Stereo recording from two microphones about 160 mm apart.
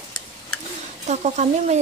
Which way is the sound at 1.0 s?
45° right (ahead or behind).